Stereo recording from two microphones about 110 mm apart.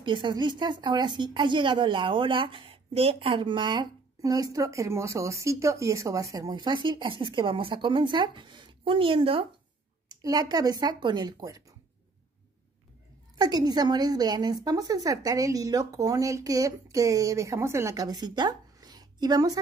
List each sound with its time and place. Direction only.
0.0 s a woman's voice: 50° right (ahead or behind)
4.2 s speech: 35° right (ahead or behind)
6.5 s a woman's voice: 45° right (ahead or behind)
10.0 s a woman's voice: 35° right (ahead or behind)
13.4 s a woman's voice: 35° right (ahead or behind)